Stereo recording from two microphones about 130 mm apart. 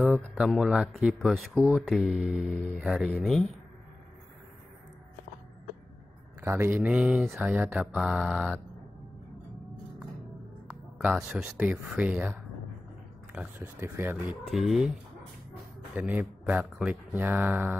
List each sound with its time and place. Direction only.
0.5 s speech: 5° right (ahead or behind)
6.4 s speech: 20° right (ahead or behind)
11.1 s speech: 5° right (ahead or behind)
13.6 s speech: 20° right (ahead or behind)
14.4 s speech: centre (ahead or behind)
16.0 s speech: 10° right (ahead or behind)